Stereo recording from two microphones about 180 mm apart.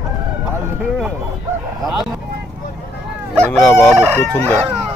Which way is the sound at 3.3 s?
10° left (ahead or behind).